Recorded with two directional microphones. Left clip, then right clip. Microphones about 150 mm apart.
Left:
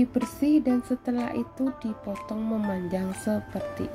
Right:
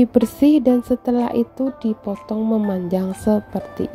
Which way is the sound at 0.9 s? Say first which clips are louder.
Right 10 dB; 30° right (ahead or behind).